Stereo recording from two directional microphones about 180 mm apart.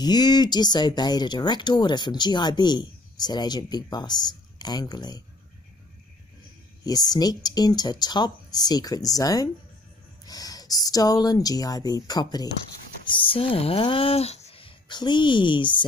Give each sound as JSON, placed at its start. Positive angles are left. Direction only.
{"t": 0.0, "sound": "speech", "side_deg": 20}
{"t": 6.8, "sound": "speech", "side_deg": 20}